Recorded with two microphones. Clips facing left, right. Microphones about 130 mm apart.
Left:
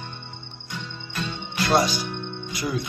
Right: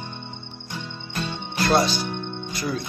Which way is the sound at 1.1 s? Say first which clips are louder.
Right 1 dB; 35° right (ahead or behind).